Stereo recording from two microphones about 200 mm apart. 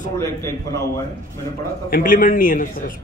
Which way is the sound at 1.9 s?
45° left (ahead or behind).